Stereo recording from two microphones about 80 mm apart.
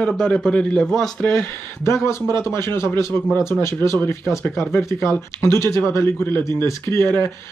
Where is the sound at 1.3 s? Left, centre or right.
Left.